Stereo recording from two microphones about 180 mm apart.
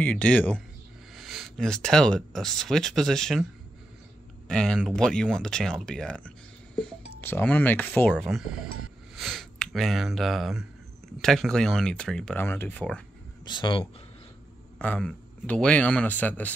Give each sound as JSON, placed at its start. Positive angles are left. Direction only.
{"t": 0.0, "sound": "a man's voice", "side_deg": 10}
{"t": 4.5, "sound": "speech", "side_deg": 5}
{"t": 8.2, "sound": "speech", "side_deg": 0}
{"t": 13.5, "sound": "speech", "side_deg": 25}
{"t": 14.8, "sound": "a man's voice", "side_deg": 5}